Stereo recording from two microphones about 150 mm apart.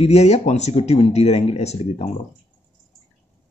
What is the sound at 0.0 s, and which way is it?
Speech, 45° left (ahead or behind).